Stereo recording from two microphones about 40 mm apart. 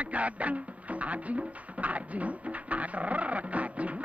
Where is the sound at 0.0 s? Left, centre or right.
Right.